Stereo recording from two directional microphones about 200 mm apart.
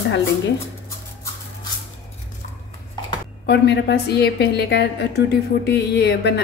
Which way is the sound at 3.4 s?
55° left (ahead or behind).